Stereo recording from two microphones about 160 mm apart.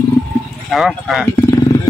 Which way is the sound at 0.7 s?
Centre (ahead or behind).